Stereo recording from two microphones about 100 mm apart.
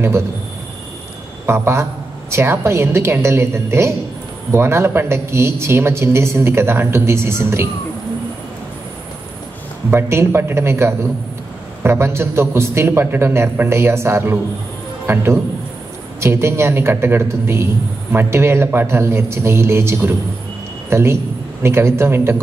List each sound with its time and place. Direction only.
1.4 s a woman's voice: 25° right (ahead or behind)
9.8 s a woman's voice: 25° right (ahead or behind)